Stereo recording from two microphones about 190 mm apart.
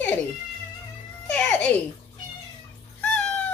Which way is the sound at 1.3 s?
5° left (ahead or behind).